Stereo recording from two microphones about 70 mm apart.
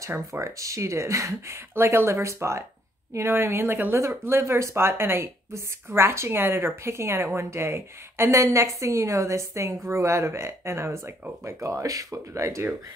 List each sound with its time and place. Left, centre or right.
0.3 s speech: right